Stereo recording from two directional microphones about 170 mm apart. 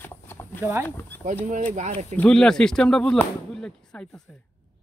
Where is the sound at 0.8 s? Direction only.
10° left (ahead or behind).